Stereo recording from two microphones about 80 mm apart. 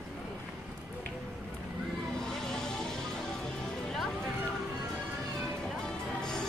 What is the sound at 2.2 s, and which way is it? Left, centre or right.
Music, centre.